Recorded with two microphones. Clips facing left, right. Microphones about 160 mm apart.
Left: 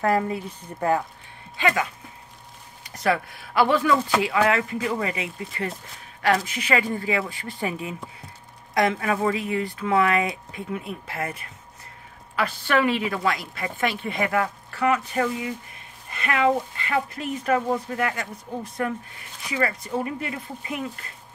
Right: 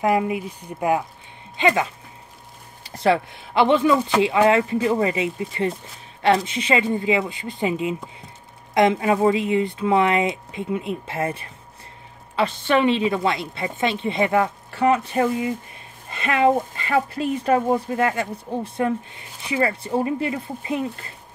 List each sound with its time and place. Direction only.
0.0 s speech: 15° right (ahead or behind)
1.6 s a woman's voice: 25° right (ahead or behind)